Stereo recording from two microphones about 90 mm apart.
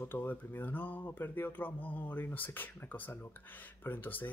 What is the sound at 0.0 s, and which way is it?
Speech, 25° left (ahead or behind).